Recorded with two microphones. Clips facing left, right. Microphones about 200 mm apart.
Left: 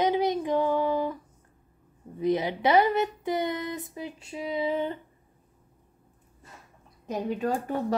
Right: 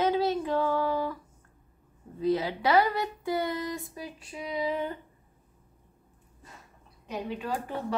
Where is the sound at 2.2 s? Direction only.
20° left (ahead or behind).